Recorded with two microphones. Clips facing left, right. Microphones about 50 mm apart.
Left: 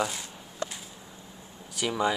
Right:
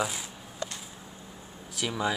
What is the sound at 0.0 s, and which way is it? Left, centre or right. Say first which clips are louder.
Speech: left 1 dB; centre.